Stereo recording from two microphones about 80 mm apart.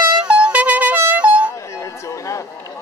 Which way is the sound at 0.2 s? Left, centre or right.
Centre.